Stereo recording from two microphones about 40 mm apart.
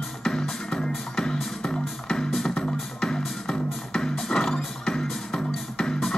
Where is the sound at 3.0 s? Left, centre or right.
Centre.